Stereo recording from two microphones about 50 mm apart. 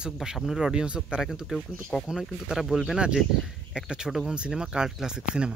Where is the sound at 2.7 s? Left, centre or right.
Right.